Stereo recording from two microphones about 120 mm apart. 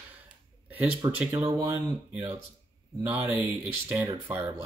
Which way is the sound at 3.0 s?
15° right (ahead or behind).